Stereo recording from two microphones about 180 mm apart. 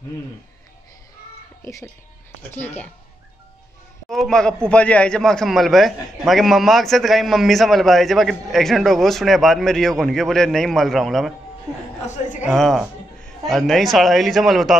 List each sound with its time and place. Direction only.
1.6 s speech: 15° left (ahead or behind)
4.1 s a man's voice: centre (ahead or behind)
12.4 s a man's voice: centre (ahead or behind)